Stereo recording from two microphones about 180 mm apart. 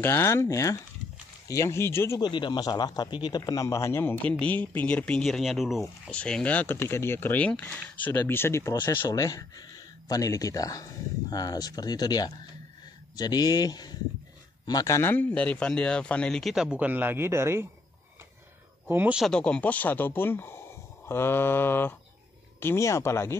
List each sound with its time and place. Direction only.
0.0 s a man's voice: 15° left (ahead or behind); by 17.6 s 15° right (ahead or behind)
18.9 s speech: 10° right (ahead or behind); by 23.3 s 15° left (ahead or behind)